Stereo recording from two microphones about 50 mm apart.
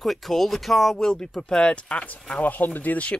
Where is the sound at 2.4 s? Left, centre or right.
Left.